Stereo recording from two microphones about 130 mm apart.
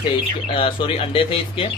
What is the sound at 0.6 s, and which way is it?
Speech, 45° left (ahead or behind).